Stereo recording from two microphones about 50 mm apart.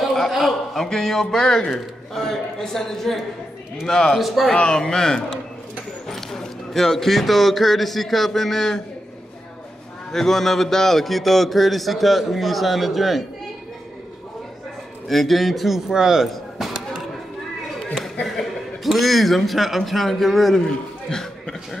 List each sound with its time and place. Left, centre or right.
0.3 s a sound: centre
0.8 s a man's voice: centre
4.2 s a man's voice: centre
4.6 s a man's voice: centre
10.1 s a man's voice: centre
15.0 s a man's voice: centre
16.3 s chop: centre
17.9 s a man's voice: centre
20.6 s a man's voice: centre